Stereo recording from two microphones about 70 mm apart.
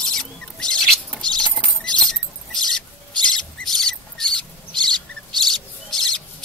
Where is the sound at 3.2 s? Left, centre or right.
Centre.